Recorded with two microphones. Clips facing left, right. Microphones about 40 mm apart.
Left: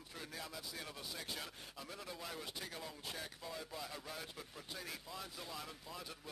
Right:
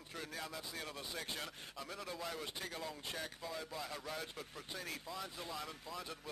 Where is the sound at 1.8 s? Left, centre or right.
Centre.